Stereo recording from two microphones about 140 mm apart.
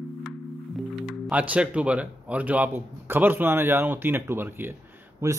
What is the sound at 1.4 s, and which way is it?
A man's voice, 10° right (ahead or behind).